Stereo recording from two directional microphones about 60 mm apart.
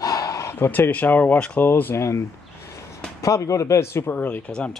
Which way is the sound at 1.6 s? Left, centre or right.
Left.